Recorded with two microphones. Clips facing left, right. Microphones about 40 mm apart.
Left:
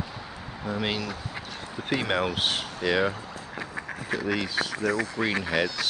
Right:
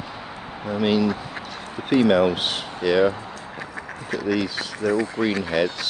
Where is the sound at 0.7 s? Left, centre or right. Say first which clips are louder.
Right 9 dB; centre.